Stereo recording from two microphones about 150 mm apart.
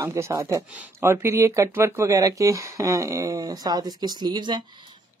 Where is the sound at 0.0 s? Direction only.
20° right (ahead or behind).